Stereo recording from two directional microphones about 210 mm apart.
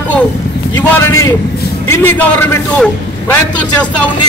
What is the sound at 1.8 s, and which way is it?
A man's voice, 10° left (ahead or behind).